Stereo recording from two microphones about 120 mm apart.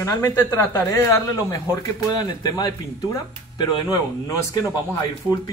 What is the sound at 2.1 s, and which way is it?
Speech, 35° left (ahead or behind).